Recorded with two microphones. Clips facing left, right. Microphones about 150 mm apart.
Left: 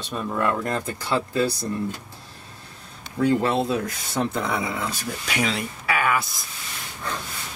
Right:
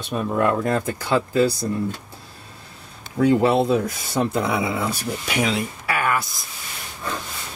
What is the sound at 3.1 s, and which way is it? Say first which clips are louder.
Speech: right 4 dB; 10° right (ahead or behind).